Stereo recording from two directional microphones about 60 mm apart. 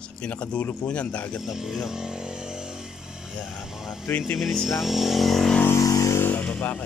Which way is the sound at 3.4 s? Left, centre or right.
Centre.